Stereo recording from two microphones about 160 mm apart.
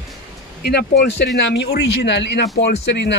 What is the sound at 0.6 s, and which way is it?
Speech, 85° left.